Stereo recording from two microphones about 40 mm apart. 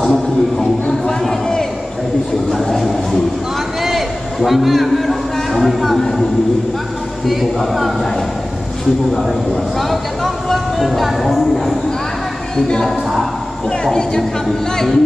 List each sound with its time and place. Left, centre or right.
1.0 s a sound: centre
7.2 s speech: centre
9.8 s speech: centre